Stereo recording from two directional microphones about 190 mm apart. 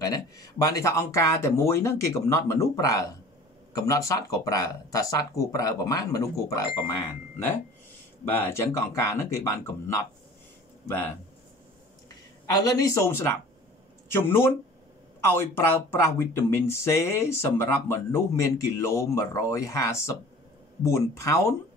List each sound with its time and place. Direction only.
0.0 s speech: 20° left (ahead or behind)
8.3 s speech: 10° left (ahead or behind)
12.5 s speech: 15° left (ahead or behind)